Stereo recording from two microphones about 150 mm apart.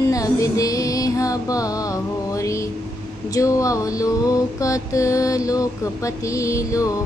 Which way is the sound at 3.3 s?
20° left (ahead or behind).